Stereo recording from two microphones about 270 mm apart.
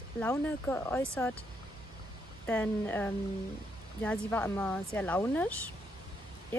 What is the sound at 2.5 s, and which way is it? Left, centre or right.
Speech, centre.